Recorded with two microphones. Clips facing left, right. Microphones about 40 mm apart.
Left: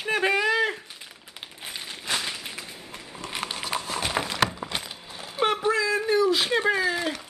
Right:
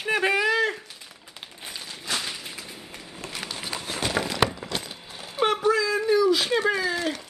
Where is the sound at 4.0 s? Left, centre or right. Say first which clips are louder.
Right 4 dB; centre.